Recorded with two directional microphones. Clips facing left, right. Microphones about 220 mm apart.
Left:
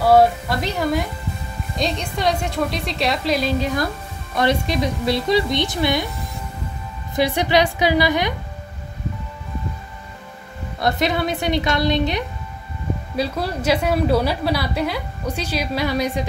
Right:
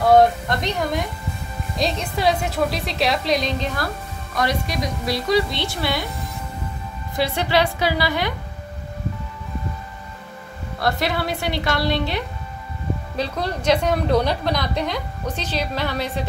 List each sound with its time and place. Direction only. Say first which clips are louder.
0.0 s a woman's voice: even; 5° left (ahead or behind)
4.4 s speech: left 4 dB; 25° left (ahead or behind)
7.2 s a woman's voice: left 3 dB; 15° left (ahead or behind)
10.8 s a woman's voice: left 2 dB; 20° left (ahead or behind)